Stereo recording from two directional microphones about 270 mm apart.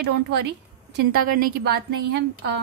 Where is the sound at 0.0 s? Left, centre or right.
Right.